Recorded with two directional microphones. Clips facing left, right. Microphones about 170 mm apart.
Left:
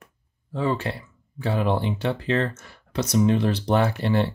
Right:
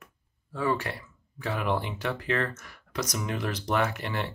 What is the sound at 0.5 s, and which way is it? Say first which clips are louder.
Speech: left 3 dB; 25° left (ahead or behind).